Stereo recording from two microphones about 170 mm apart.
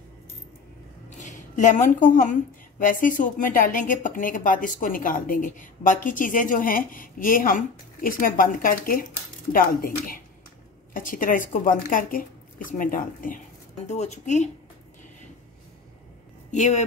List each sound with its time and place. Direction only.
1.1 s a woman's voice: 45° left (ahead or behind)
13.8 s a woman's voice: 40° left (ahead or behind)
16.5 s a woman's voice: 45° left (ahead or behind)